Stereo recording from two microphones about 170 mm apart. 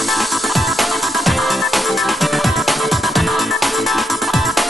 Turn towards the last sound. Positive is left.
turn(degrees=0)  # may be behind; listen again after turning